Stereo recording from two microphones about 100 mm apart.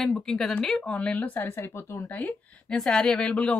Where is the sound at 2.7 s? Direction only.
5° left (ahead or behind).